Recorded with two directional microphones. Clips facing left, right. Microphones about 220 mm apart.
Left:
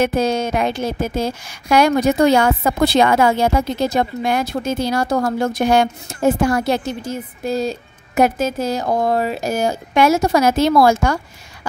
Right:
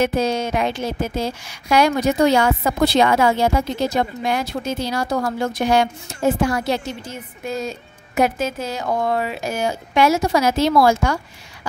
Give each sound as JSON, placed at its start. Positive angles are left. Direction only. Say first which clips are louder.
{"t": 0.0, "sound": "speech", "louder": "left 2 dB", "side_deg": 50}
{"t": 7.4, "sound": "speech", "louder": "left 5 dB", "side_deg": 35}